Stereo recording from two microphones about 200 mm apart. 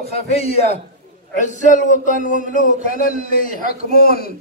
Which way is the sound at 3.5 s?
45° left (ahead or behind).